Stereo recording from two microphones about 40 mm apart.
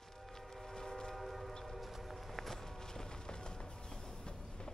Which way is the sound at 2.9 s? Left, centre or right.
Centre.